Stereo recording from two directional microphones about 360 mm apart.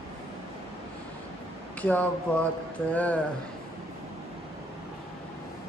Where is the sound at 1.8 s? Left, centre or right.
Centre.